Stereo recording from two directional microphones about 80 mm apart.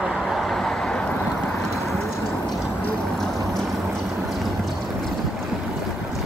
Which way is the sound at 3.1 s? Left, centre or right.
Centre.